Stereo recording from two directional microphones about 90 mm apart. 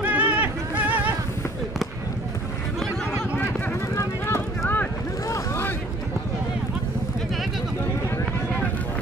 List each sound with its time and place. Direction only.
0.0 s a sound: 15° right (ahead or behind)
3.9 s clip-clop: 20° left (ahead or behind)
5.3 s boat: 30° left (ahead or behind)